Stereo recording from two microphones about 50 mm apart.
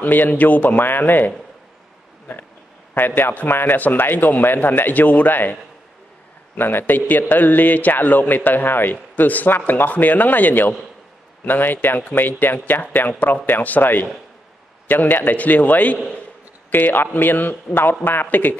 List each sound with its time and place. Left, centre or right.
0.0 s speech: left
2.9 s speech: left
6.6 s speech: left